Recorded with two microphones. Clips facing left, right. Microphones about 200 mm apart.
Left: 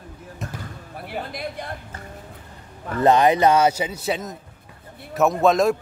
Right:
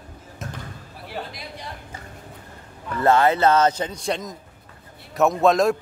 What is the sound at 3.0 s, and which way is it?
A man's voice, 15° left (ahead or behind).